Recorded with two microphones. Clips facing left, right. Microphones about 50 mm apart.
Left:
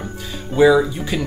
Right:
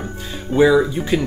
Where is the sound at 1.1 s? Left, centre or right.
Right.